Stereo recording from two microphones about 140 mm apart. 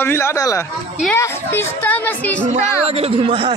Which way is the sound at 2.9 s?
40° right (ahead or behind).